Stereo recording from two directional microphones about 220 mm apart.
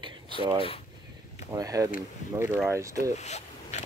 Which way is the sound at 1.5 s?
15° right (ahead or behind).